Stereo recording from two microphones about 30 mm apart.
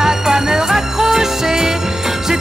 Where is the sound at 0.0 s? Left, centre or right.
Centre.